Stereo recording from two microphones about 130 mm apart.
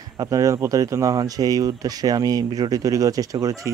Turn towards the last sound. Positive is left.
turn(degrees=-25)  # may be behind; listen again after turning